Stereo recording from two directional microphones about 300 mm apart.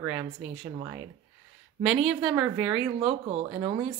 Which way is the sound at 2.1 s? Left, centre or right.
Centre.